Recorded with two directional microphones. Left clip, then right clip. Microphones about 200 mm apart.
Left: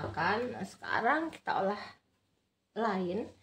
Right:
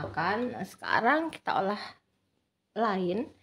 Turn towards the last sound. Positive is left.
turn(degrees=-60)  # may be behind; listen again after turning